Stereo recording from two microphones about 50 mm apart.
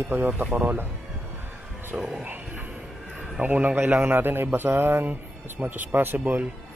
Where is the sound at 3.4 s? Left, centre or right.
Right.